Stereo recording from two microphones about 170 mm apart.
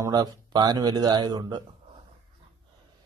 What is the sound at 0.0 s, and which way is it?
A man's voice, 20° right (ahead or behind).